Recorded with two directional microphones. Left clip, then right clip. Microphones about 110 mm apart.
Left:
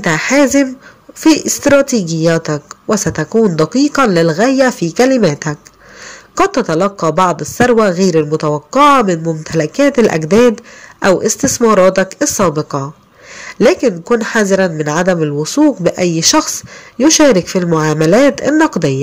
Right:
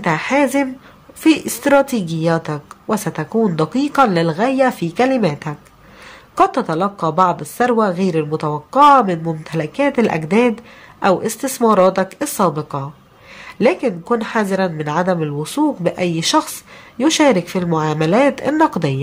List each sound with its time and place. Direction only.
0.0 s a woman's voice: 35° left (ahead or behind)
6.3 s a woman's voice: 30° left (ahead or behind)